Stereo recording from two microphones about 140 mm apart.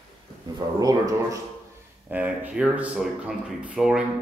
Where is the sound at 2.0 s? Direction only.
10° right (ahead or behind).